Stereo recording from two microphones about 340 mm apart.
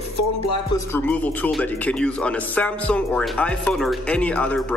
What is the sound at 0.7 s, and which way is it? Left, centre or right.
Speech, centre.